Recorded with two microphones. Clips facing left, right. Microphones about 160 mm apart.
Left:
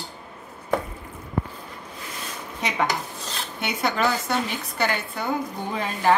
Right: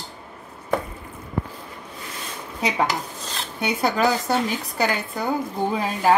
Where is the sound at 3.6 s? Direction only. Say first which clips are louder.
Right 3 dB; 40° right (ahead or behind).